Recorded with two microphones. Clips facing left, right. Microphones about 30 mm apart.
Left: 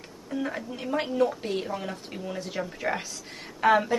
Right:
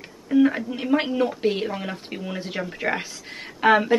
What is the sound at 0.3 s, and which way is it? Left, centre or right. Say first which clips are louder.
A woman's voice: right 12 dB; right.